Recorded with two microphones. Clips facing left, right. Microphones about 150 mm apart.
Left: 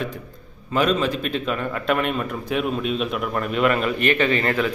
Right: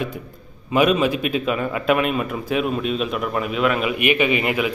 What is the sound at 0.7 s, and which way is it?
A man's voice, 10° right (ahead or behind).